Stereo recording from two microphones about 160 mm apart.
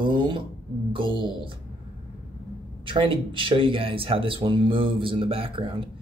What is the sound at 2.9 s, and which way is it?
Speech, 30° right (ahead or behind).